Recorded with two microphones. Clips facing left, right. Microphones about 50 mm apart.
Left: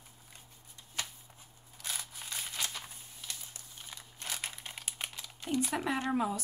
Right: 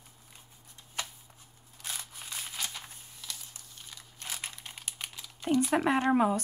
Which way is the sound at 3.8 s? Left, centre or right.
Centre.